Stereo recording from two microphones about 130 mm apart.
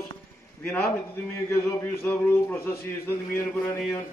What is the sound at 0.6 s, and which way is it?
A man's voice, 10° left (ahead or behind).